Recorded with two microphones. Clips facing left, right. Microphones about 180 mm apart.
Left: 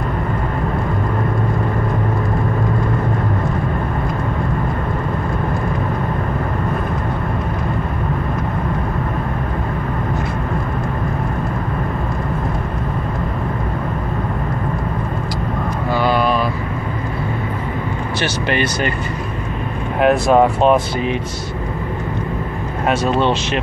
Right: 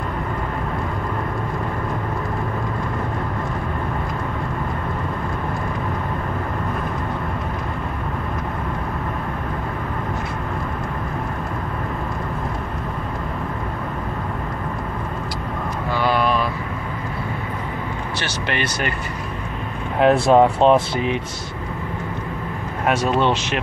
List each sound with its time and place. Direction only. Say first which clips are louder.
15.9 s vehicle: left 3 dB; centre (ahead or behind)
18.5 s speech: left 4 dB; centre (ahead or behind)
20.0 s speech: left 1 dB; 25° right (ahead or behind)